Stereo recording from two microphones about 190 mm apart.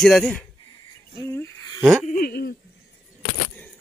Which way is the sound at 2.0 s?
50° left (ahead or behind).